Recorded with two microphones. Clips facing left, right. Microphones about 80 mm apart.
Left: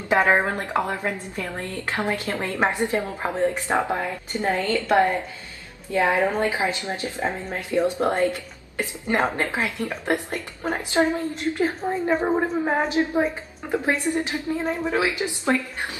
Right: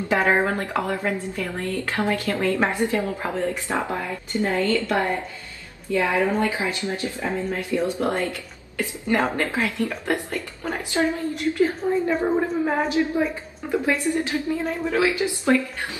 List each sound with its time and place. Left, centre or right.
0.6 s a woman's voice: left